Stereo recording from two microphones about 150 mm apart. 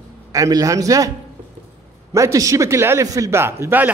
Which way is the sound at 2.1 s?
20° right (ahead or behind).